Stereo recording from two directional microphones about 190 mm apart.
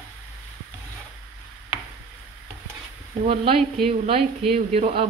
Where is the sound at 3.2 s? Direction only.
30° right (ahead or behind).